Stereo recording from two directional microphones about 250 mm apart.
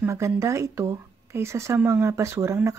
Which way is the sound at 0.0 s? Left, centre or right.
Centre.